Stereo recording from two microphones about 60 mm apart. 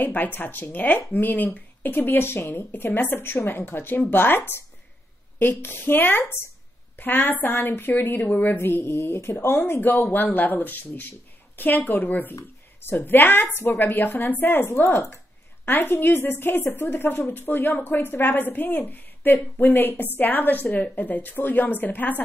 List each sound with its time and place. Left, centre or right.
0.0 s a woman's voice: left